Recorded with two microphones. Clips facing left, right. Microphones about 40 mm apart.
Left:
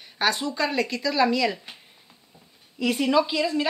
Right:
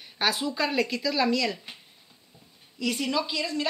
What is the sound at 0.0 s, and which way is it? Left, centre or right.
Speech, centre.